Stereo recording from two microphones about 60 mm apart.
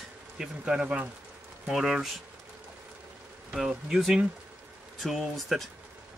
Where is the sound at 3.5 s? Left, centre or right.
Centre.